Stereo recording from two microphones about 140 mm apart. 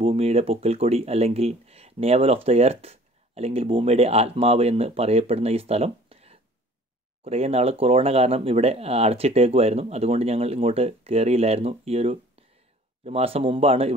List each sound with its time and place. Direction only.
0.0 s speech: 45° right (ahead or behind)